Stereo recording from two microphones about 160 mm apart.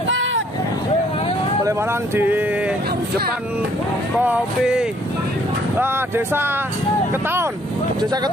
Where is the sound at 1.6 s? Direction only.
15° right (ahead or behind).